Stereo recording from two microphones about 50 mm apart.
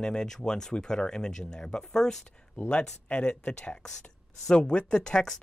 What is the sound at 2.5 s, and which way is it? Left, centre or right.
Speech, left.